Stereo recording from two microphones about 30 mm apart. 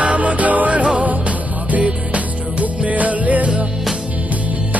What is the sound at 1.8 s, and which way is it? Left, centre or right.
Music, right.